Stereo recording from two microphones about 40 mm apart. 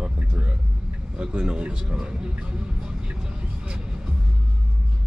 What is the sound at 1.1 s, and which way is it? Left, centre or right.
A man's voice, right.